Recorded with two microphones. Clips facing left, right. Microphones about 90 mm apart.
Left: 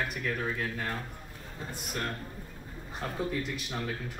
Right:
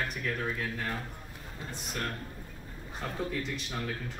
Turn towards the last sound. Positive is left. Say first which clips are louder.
# left 1 dB
turn(degrees=5)  # may be behind; listen again after turning